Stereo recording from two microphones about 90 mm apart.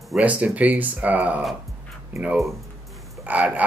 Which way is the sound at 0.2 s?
15° right (ahead or behind).